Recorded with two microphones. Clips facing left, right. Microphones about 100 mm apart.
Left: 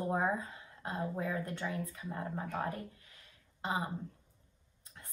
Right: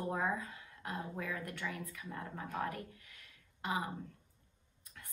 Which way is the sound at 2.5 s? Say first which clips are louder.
Right 2 dB; 30° left (ahead or behind).